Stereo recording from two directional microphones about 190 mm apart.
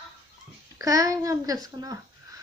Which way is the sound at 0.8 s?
20° right (ahead or behind).